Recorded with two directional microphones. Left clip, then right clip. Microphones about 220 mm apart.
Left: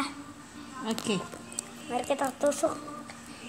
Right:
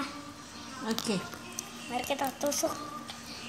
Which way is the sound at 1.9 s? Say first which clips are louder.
Left 3 dB; 35° left (ahead or behind).